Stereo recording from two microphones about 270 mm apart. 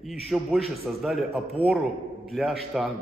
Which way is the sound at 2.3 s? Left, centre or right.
Centre.